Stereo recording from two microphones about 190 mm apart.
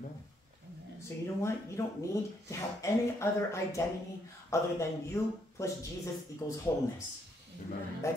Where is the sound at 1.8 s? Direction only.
15° left (ahead or behind).